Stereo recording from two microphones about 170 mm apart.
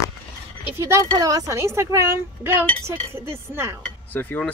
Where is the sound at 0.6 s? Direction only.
15° right (ahead or behind).